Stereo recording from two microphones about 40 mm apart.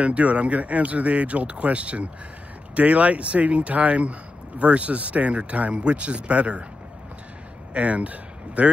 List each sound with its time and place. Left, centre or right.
0.0 s speech: right
7.7 s speech: right